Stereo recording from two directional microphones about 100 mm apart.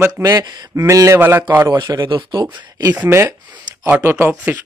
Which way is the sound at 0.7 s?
30° right (ahead or behind).